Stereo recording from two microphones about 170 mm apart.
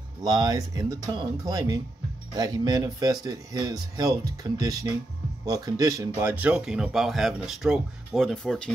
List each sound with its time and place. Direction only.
0.2 s speech: 20° right (ahead or behind); by 8.7 s 5° left (ahead or behind)